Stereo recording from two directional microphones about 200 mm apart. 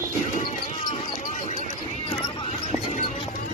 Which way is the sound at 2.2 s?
30° left (ahead or behind).